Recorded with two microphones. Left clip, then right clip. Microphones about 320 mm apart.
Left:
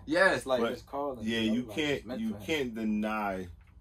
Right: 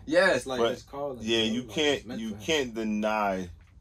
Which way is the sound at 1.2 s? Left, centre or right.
Centre.